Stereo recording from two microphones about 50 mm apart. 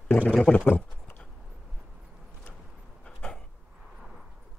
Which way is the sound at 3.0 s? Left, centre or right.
Centre.